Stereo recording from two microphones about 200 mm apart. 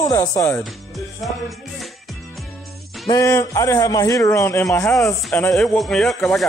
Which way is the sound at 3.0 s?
15° left (ahead or behind).